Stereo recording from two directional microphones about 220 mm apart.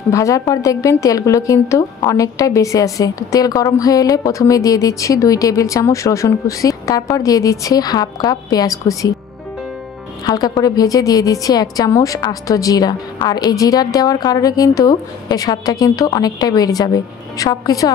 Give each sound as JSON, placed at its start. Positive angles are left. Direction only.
{"t": 0.1, "sound": "a woman's voice", "side_deg": 15}
{"t": 10.2, "sound": "a woman's voice", "side_deg": 20}